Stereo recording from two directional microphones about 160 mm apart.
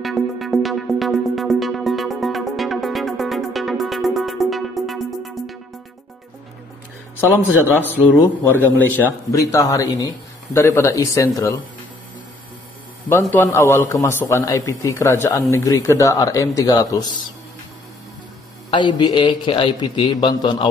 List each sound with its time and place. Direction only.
0.0 s music: centre (ahead or behind)
7.6 s a man's voice: 10° left (ahead or behind)
13.3 s a man's voice: 15° left (ahead or behind)
18.7 s a man's voice: 30° left (ahead or behind)